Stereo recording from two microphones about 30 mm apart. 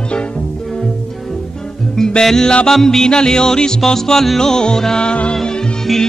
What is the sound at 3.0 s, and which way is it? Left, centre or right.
Music, left.